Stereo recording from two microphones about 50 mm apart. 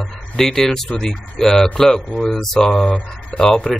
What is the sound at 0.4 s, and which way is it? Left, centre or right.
A man's voice, centre.